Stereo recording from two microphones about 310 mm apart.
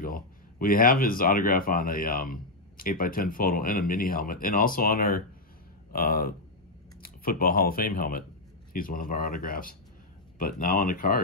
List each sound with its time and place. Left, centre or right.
0.0 s speech: left